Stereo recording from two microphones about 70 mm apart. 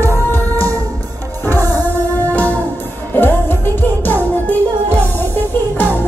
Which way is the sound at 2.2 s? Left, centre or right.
Left.